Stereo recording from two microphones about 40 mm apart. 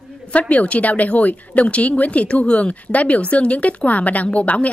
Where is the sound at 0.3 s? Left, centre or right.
Left.